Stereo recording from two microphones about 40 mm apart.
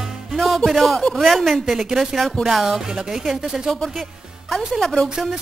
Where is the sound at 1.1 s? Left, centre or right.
Centre.